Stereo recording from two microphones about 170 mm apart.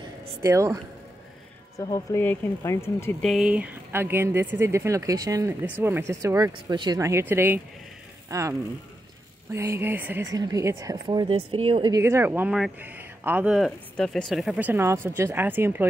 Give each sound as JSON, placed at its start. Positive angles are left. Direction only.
{"t": 0.4, "sound": "speech", "side_deg": -15}
{"t": 1.8, "sound": "speech", "side_deg": 20}
{"t": 3.2, "sound": "a woman's voice", "side_deg": 0}
{"t": 12.0, "sound": "speech", "side_deg": -15}